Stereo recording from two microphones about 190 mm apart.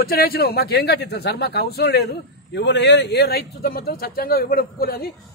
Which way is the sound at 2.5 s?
65° left (ahead or behind).